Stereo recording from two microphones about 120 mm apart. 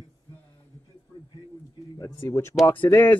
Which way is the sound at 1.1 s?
45° left (ahead or behind).